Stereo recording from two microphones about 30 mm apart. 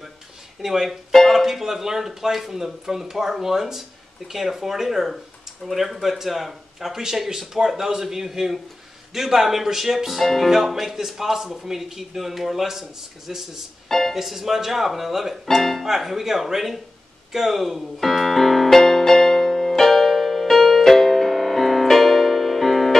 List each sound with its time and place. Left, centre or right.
0.6 s speech: centre
1.1 s music: centre
1.4 s speech: centre
7.0 s speech: centre
10.2 s speech: centre
10.5 s speech: centre
13.8 s music: centre
14.1 s speech: centre
15.4 s speech: centre
15.8 s speech: centre
18.8 s music: centre
19.9 s music: centre